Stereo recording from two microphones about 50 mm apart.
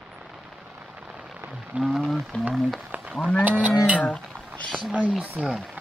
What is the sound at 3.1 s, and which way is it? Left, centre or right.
Livestock, left.